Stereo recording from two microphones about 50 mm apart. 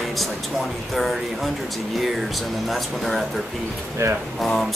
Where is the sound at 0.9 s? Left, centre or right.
Centre.